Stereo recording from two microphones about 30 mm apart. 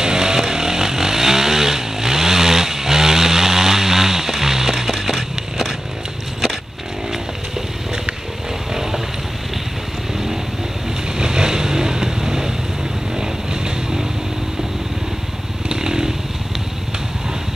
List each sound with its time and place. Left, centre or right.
0.0 s vehicle: right
11.1 s vehicle: right
15.7 s motorcycle: right